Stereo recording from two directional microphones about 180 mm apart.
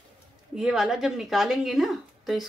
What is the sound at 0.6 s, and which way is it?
Speech, 5° right (ahead or behind).